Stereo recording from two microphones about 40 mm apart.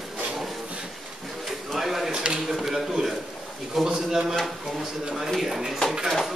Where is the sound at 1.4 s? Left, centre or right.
Centre.